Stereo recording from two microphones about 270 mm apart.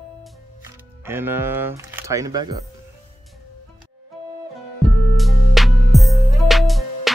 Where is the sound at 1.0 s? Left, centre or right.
Centre.